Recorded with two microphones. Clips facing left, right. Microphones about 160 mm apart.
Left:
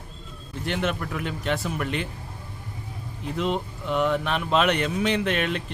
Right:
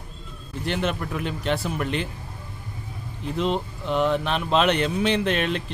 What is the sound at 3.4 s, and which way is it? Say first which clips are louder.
Speech: right 2 dB; 25° right (ahead or behind).